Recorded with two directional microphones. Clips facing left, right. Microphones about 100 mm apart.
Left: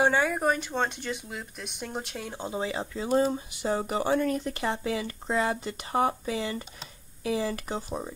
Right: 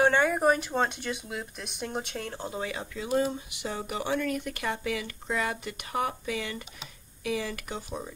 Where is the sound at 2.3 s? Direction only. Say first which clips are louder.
Left 2 dB; 20° left (ahead or behind).